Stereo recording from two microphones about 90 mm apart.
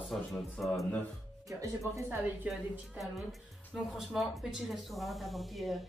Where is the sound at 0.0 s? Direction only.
Centre (ahead or behind).